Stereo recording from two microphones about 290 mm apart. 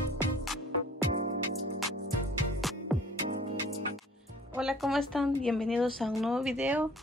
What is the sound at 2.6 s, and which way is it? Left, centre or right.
Music, centre.